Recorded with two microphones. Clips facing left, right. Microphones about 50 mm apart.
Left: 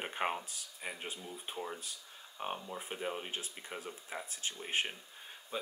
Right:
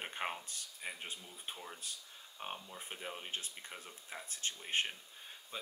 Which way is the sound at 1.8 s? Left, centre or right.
Centre.